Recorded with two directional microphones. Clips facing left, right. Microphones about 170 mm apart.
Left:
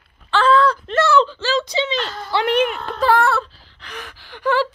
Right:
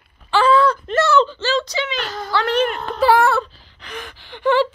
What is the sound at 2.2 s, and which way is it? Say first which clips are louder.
Speech: left 1 dB; 20° left (ahead or behind).